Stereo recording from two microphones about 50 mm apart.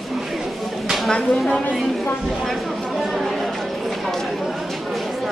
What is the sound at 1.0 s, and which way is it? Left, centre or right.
Speech, left.